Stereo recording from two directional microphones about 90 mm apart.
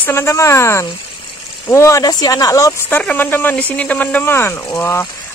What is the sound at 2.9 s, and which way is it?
Speech, 20° left (ahead or behind).